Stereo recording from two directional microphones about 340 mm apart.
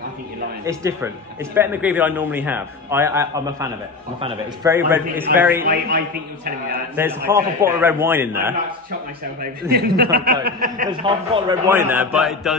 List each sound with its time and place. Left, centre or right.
0.7 s a man's voice: centre
5.6 s a man's voice: right
7.2 s a man's voice: centre
9.4 s a man's voice: right
10.9 s a man's voice: centre